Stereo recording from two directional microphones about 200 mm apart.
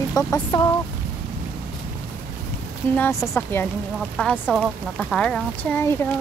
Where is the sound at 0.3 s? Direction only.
20° left (ahead or behind).